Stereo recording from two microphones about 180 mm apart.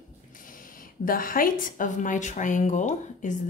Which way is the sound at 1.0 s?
50° left (ahead or behind).